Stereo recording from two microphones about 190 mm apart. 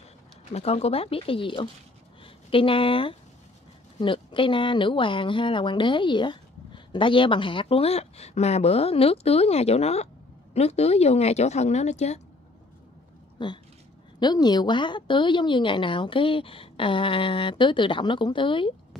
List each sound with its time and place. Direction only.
0.5 s a woman's voice: 35° left (ahead or behind)
13.4 s speech: 25° left (ahead or behind)